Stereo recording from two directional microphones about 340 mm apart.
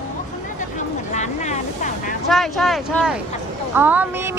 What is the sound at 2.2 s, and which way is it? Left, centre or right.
A woman's voice, centre.